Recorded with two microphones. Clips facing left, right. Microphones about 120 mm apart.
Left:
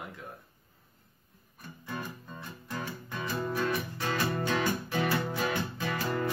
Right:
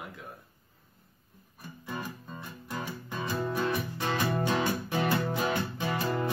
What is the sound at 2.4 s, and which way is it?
Music, 15° right (ahead or behind).